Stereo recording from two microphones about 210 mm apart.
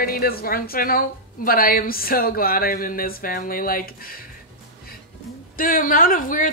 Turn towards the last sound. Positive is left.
turn(degrees=40)  # may be behind; listen again after turning